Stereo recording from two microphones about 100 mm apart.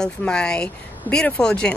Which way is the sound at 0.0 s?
10° left (ahead or behind).